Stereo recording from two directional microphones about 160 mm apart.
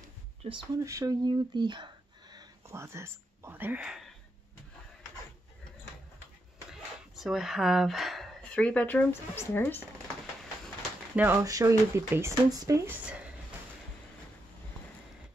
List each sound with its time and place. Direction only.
0.4 s speech: 30° right (ahead or behind)
0.8 s speech: 20° right (ahead or behind); by 4.1 s 5° right (ahead or behind)
6.7 s speech: centre (ahead or behind)
11.1 s speech: 15° right (ahead or behind)
13.0 s a sound: 5° right (ahead or behind)